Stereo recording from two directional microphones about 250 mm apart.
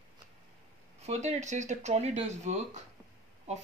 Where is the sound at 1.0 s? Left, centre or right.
Right.